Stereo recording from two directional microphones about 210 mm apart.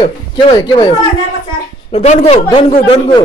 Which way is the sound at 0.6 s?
20° left (ahead or behind).